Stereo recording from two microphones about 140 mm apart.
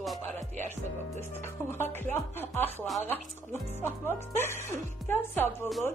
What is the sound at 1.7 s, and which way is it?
Speech, 15° left (ahead or behind).